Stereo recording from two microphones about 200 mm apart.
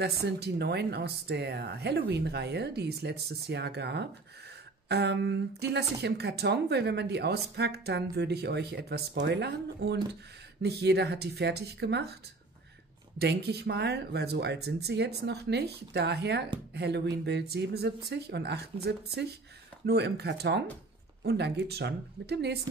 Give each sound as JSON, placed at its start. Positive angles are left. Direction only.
{"t": 0.0, "sound": "speech", "side_deg": -55}
{"t": 13.2, "sound": "speech", "side_deg": -55}